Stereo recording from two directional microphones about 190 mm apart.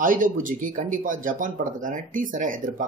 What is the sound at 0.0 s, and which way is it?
Speech, 45° right (ahead or behind).